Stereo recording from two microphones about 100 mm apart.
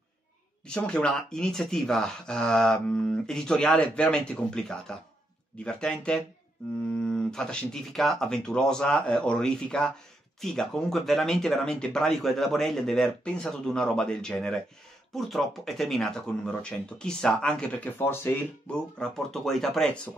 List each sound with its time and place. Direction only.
0.7 s speech: 10° left (ahead or behind)
17.9 s speech: 25° left (ahead or behind)
18.7 s speech: 10° left (ahead or behind)